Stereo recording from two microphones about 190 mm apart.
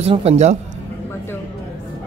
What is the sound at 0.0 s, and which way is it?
Speech, 30° right (ahead or behind).